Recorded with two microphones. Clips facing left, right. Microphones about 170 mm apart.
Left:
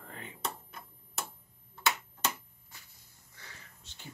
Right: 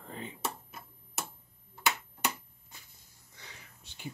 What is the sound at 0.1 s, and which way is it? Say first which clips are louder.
Typewriter: right 6 dB; 25° right (ahead or behind).